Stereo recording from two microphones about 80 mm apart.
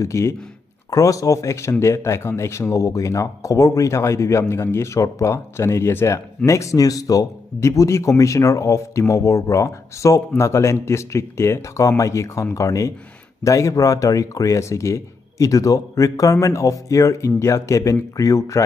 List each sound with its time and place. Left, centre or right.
0.0 s speech: left